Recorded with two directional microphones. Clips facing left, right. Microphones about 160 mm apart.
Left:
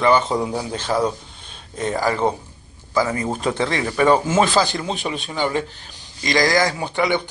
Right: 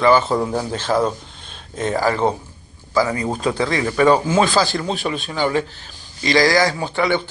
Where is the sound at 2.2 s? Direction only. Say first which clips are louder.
Right 1 dB; 10° right (ahead or behind).